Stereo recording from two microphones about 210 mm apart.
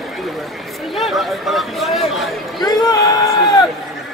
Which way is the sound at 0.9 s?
Centre (ahead or behind).